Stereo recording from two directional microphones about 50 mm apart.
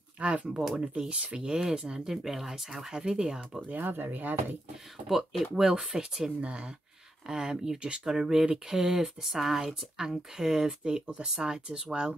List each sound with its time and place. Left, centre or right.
0.2 s speech: right
3.6 s speech: right
5.0 s speech: centre